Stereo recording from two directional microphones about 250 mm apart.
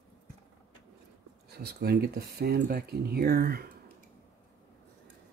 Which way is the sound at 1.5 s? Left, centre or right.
Right.